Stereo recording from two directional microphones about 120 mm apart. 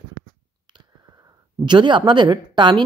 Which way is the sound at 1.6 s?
40° right (ahead or behind).